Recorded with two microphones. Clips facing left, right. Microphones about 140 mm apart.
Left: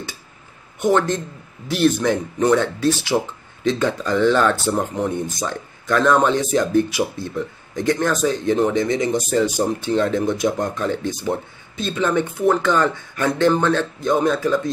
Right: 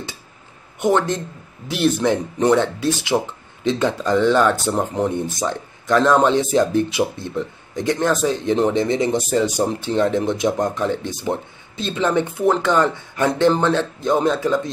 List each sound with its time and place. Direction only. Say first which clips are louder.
0.7 s speech: even; 20° right (ahead or behind)